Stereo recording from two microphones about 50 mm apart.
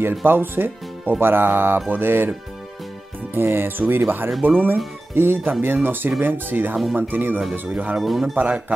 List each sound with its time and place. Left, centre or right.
0.2 s speech: right
3.3 s speech: right
7.7 s speech: right
8.0 s speech: centre
8.4 s speech: right